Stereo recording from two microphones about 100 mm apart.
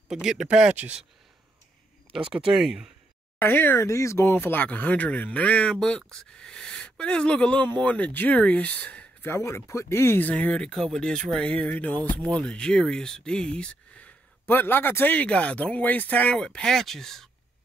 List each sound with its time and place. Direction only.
0.1 s speech: 5° right (ahead or behind)
2.1 s speech: 5° right (ahead or behind)
3.3 s speech: 20° left (ahead or behind)
9.3 s speech: 30° left (ahead or behind); by 17.3 s 5° left (ahead or behind)